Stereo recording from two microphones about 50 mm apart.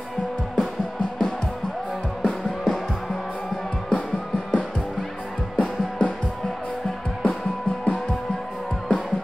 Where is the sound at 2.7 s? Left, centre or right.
Centre.